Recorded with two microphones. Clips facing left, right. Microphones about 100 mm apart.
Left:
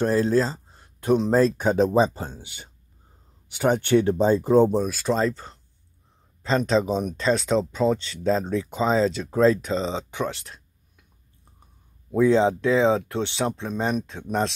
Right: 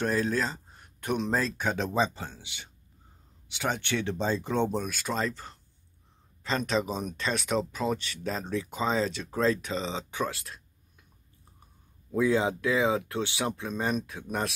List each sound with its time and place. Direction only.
0.0 s speech: 30° left (ahead or behind)
12.2 s speech: 10° right (ahead or behind)
13.5 s speech: 15° left (ahead or behind)